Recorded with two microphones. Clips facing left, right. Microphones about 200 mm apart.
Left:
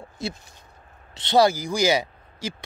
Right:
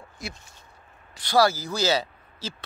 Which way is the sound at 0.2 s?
25° left (ahead or behind).